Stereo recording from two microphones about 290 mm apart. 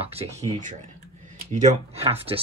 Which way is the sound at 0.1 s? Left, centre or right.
Right.